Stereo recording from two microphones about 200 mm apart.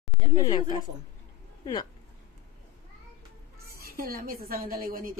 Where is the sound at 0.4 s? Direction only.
20° left (ahead or behind).